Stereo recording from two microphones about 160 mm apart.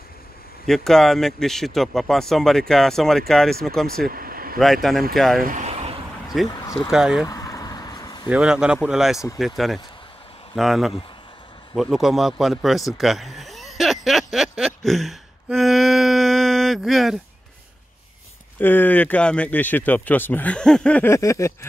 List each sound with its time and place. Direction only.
0.7 s speech: centre (ahead or behind)
4.1 s a sound: 65° right (ahead or behind)
5.1 s speech: centre (ahead or behind)
5.4 s vehicle: 50° right (ahead or behind)
6.2 s a sound: centre (ahead or behind)
6.9 s speech: 5° right (ahead or behind)
7.2 s vehicle: 20° left (ahead or behind)
8.3 s speech: 5° right (ahead or behind)
10.5 s speech: centre (ahead or behind)
11.7 s a sound: centre (ahead or behind)
18.6 s speech: 10° left (ahead or behind)